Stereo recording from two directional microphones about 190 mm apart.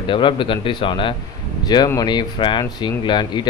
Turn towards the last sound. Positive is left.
turn(degrees=25)  # may be behind; listen again after turning